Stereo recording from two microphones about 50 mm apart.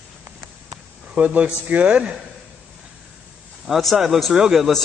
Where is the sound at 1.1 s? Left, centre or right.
Right.